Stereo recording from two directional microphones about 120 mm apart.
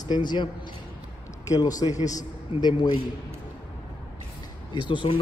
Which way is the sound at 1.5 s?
30° left (ahead or behind).